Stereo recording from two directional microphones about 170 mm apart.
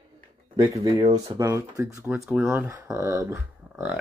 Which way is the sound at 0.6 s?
20° right (ahead or behind).